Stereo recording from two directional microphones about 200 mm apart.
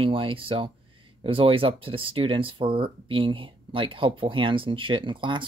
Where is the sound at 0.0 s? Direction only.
25° right (ahead or behind).